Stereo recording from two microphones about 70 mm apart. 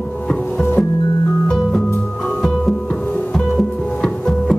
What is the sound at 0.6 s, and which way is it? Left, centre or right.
Music, left.